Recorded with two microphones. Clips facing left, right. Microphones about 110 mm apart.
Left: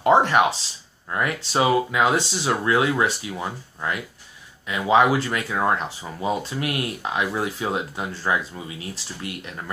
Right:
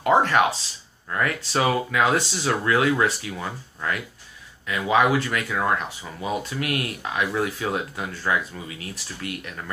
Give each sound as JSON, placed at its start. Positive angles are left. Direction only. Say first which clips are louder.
{"t": 0.0, "sound": "speech", "louder": "left 2 dB", "side_deg": 25}